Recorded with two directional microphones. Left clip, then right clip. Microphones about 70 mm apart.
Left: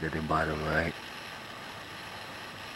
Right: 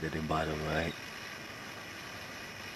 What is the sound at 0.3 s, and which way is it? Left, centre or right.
Speech, centre.